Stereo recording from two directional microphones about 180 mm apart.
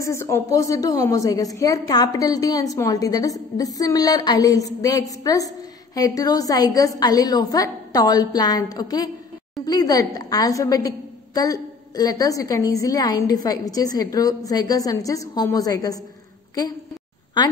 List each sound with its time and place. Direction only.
0.0 s a woman's voice: 15° left (ahead or behind)